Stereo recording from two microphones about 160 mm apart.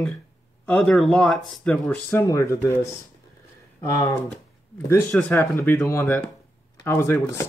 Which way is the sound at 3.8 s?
20° left (ahead or behind).